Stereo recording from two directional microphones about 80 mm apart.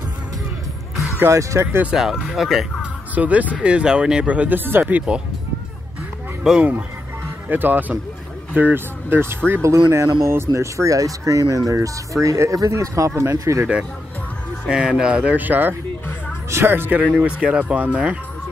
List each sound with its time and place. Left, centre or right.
1.2 s speech: right
1.6 s speech: right
2.1 s speech: centre
2.8 s music: centre
3.6 s speech: centre
6.4 s speech: centre
7.4 s speech: right
14.7 s speech: centre; by 17.0 s right
17.2 s speech: centre